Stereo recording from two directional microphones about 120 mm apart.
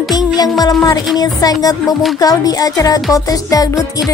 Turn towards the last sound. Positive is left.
turn(degrees=30)  # may be behind; listen again after turning